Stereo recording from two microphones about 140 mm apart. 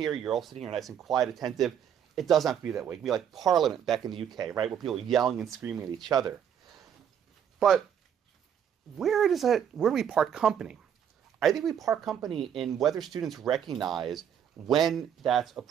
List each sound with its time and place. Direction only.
0.0 s speech: centre (ahead or behind)
6.0 s speech: 25° right (ahead or behind)
7.5 s speech: centre (ahead or behind)
8.9 s speech: centre (ahead or behind)